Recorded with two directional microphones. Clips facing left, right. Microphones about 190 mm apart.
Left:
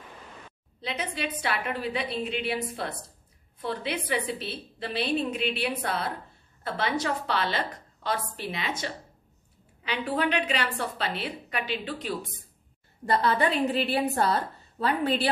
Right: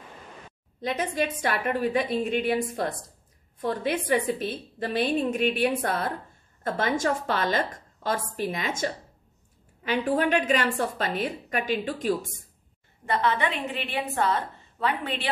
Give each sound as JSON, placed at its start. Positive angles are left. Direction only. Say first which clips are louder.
{"t": 0.7, "sound": "a woman's voice", "louder": "right 6 dB", "side_deg": -45}
{"t": 13.0, "sound": "a woman's voice", "louder": "left 1 dB", "side_deg": 35}